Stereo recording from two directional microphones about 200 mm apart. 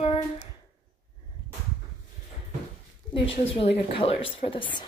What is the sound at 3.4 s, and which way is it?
Speech, 30° left (ahead or behind).